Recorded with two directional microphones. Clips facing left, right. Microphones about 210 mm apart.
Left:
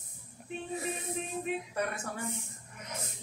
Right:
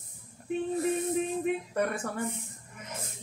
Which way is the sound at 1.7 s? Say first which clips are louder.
Right 5 dB; 55° right (ahead or behind).